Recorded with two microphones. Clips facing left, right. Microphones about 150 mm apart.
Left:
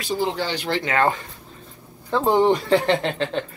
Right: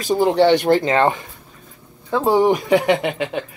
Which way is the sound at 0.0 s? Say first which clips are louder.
Right 9 dB; 55° right (ahead or behind).